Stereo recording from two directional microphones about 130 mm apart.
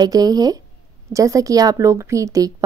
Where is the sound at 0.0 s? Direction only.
30° right (ahead or behind).